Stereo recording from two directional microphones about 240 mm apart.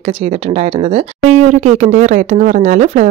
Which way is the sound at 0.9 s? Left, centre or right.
Right.